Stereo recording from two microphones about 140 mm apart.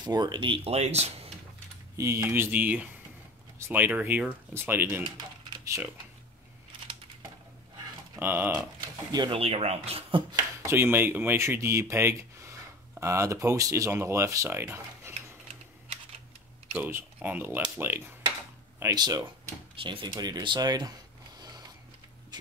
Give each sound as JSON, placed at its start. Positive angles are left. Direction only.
{"t": 0.0, "sound": "speech", "side_deg": -30}
{"t": 2.0, "sound": "speech", "side_deg": -25}
{"t": 5.0, "sound": "typing", "side_deg": -30}
{"t": 8.2, "sound": "speech", "side_deg": -15}
{"t": 9.1, "sound": "speech", "side_deg": -35}
{"t": 10.6, "sound": "speech", "side_deg": -15}
{"t": 16.7, "sound": "speech", "side_deg": -10}
{"t": 18.9, "sound": "speech", "side_deg": -30}
{"t": 21.4, "sound": "a sound", "side_deg": -30}